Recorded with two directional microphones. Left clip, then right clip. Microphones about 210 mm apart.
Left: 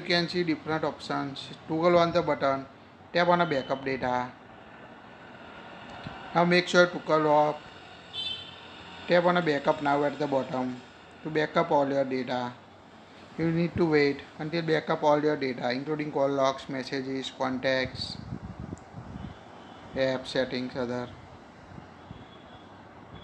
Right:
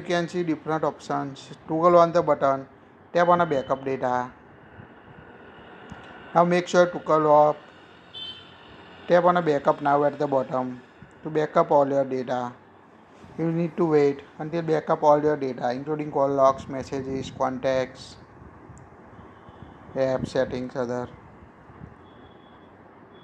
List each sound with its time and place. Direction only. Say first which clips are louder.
0.0 s a man's voice: right 1 dB; 20° right (ahead or behind)
6.3 s speech: right 3 dB; 15° right (ahead or behind)
9.1 s a man's voice: right 4 dB; 15° right (ahead or behind)
20.0 s a man's voice: right 4 dB; 20° right (ahead or behind)